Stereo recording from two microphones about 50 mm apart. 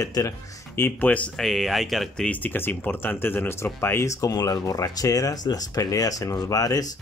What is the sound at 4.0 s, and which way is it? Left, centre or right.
Speech, left.